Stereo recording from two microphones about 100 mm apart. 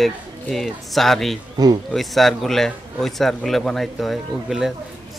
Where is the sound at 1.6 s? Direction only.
40° right (ahead or behind).